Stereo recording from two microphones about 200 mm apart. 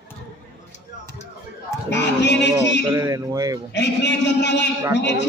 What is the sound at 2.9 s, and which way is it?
Speech, 15° right (ahead or behind).